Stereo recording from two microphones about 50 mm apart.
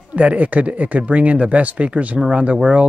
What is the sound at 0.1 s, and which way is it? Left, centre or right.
Speech, right.